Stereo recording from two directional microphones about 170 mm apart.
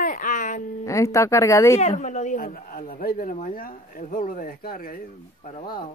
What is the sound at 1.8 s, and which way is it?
Speech, 45° left (ahead or behind).